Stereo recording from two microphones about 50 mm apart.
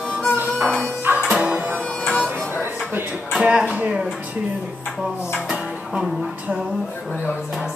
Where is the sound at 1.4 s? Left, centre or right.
Right.